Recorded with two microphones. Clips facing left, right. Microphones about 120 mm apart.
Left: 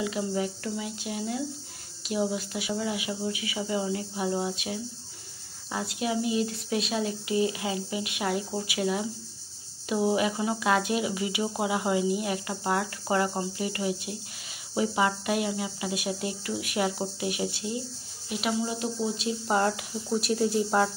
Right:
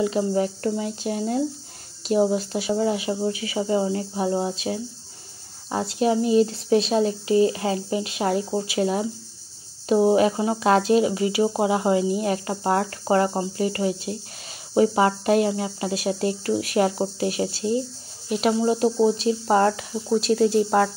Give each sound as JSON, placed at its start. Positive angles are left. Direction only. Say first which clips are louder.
{"t": 0.0, "sound": "speech", "louder": "right 7 dB", "side_deg": -35}
{"t": 20.5, "sound": "speech", "louder": "right 5 dB", "side_deg": -50}